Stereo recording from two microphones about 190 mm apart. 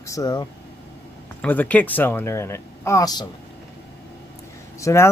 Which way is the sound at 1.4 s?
10° left (ahead or behind).